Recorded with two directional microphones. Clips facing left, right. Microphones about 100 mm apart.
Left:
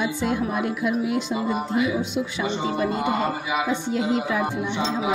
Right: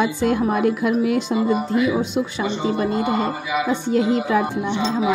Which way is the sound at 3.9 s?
45° right (ahead or behind).